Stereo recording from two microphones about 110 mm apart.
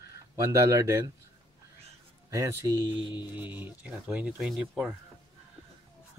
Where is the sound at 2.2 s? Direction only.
30° right (ahead or behind).